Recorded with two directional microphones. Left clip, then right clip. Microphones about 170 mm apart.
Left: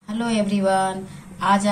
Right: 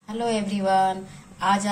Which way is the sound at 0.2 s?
25° right (ahead or behind).